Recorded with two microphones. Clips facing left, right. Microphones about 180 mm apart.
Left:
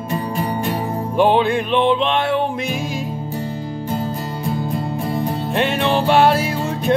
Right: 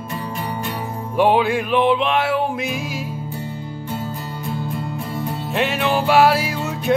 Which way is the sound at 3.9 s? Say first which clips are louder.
Left 4 dB; 35° left (ahead or behind).